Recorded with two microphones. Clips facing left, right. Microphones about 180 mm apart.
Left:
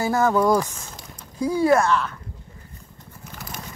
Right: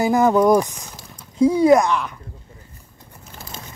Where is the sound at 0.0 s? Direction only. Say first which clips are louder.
Right 4 dB; 15° right (ahead or behind).